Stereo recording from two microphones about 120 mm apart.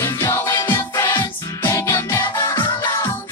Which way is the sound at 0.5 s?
40° left (ahead or behind).